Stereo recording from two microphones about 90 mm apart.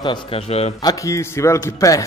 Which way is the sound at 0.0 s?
60° left (ahead or behind).